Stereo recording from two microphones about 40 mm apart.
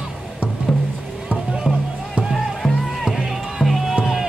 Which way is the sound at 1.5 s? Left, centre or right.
Centre.